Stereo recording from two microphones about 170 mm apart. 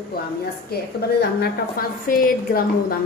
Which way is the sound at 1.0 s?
65° left (ahead or behind).